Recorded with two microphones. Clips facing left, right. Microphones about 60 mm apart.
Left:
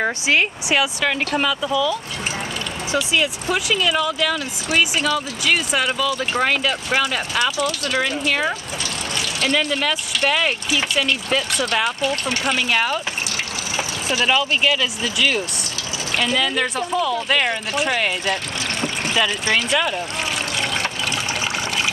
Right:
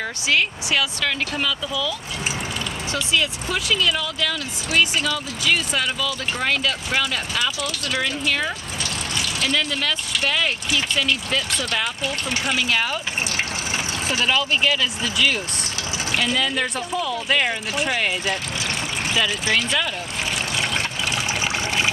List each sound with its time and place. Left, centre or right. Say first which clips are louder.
0.0 s speech: left 3 dB; left; by 13.0 s centre
14.2 s speech: left 2 dB; centre
20.5 s water: left 1 dB; centre